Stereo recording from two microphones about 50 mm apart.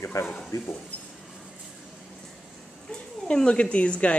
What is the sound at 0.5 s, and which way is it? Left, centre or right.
Speech, left.